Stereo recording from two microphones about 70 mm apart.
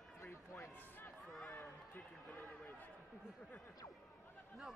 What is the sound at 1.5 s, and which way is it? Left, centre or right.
Speech, left.